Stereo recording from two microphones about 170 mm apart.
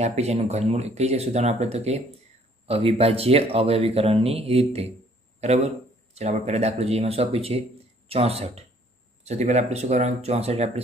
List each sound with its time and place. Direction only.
0.0 s a man's voice: 40° right (ahead or behind)